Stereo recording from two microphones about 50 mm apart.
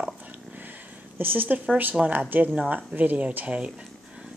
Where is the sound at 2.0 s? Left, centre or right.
Centre.